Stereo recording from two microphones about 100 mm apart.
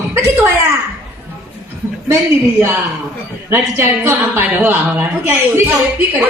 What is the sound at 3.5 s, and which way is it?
Speech, 30° right (ahead or behind).